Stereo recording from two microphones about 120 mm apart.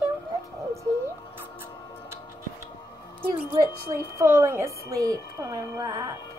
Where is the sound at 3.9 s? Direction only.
25° right (ahead or behind).